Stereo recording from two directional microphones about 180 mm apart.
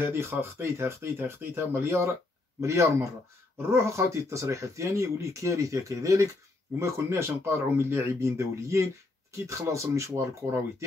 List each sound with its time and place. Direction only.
0.0 s speech: 15° right (ahead or behind)